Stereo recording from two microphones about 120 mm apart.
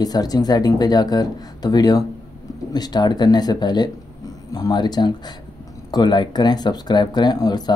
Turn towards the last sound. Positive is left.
turn(degrees=35)  # may be behind; listen again after turning